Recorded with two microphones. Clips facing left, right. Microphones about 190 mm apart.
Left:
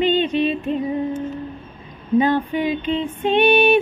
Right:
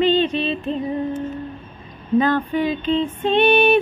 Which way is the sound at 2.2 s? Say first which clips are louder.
Even; 15° left (ahead or behind).